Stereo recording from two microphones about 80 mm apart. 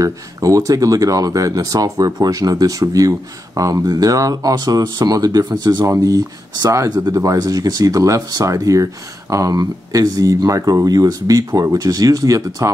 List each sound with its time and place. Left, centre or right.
0.0 s speech: right
5.9 s speech: right